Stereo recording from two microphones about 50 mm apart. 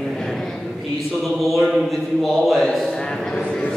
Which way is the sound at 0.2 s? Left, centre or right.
Centre.